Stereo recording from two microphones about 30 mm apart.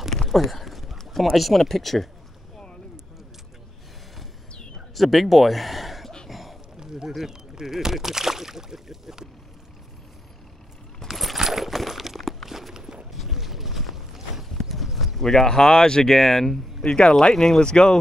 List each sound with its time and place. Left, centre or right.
0.3 s a sound: centre
1.2 s speech: centre
4.9 s speech: centre
6.2 s a sound: centre
7.6 s speech: centre
11.0 s a sound: left
11.3 s clip-clop: centre
12.2 s crumpling: centre
12.4 s walk: centre
13.1 s boat: centre
14.5 s clip-clop: centre
15.2 s speech: left
16.1 s speech: centre
16.8 s speech: left